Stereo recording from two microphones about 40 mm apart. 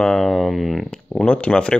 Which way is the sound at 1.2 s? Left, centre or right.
Left.